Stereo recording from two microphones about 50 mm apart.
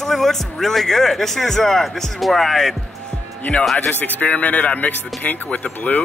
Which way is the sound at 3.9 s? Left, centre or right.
Left.